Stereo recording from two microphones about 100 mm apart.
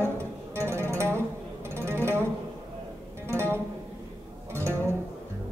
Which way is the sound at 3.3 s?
25° right (ahead or behind).